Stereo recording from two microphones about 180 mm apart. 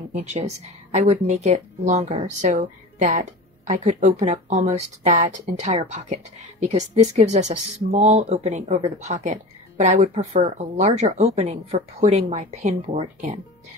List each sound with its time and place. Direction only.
0.2 s speech: 40° right (ahead or behind)